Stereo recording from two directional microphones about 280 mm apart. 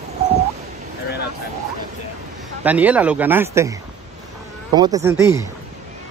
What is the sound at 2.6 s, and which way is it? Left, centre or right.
Speech, centre.